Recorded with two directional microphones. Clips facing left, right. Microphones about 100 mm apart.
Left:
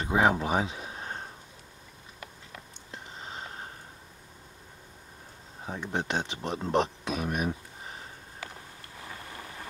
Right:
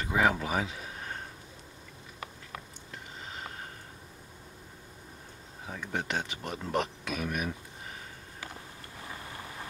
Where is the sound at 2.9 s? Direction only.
30° left (ahead or behind).